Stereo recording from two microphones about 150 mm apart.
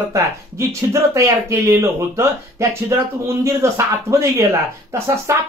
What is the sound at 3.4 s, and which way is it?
Speech, 20° right (ahead or behind).